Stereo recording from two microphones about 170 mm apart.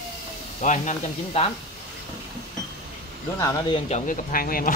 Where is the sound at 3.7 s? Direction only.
40° left (ahead or behind); by 4.7 s 55° left (ahead or behind).